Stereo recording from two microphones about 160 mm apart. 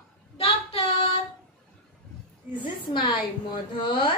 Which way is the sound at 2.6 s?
30° left (ahead or behind).